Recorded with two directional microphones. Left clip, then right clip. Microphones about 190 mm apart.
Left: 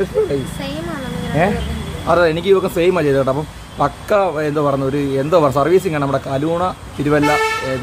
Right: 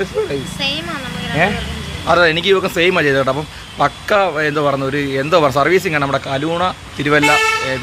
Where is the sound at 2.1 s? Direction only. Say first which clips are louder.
Right 1 dB; centre (ahead or behind).